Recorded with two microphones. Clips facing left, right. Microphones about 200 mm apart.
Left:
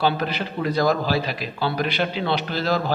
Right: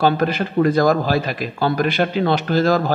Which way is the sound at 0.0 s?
50° right (ahead or behind).